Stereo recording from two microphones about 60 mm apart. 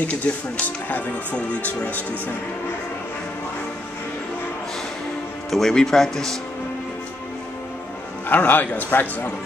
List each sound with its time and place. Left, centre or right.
0.7 s speech: left
5.5 s speech: centre
8.3 s speech: left